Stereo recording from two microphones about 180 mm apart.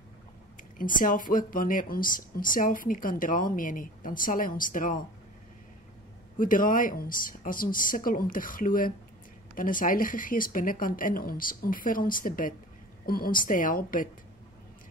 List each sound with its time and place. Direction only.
0.6 s speech: 50° left (ahead or behind)
6.3 s speech: 50° left (ahead or behind)